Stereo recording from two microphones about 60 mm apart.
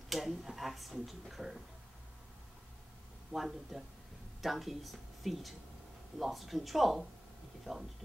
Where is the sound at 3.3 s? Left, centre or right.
Centre.